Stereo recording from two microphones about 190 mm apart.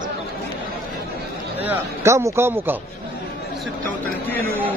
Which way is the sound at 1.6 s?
15° right (ahead or behind).